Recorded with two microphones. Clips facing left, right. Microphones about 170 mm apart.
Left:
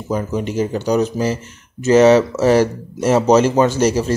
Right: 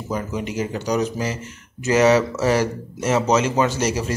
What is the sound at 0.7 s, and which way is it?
Speech, 30° left (ahead or behind).